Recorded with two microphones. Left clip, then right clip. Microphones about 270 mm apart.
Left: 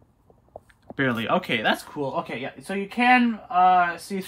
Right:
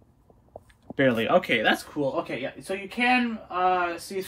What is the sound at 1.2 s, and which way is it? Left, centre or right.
Speech, centre.